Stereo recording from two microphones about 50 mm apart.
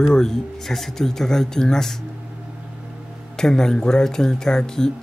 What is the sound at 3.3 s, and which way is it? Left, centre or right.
Speech, centre.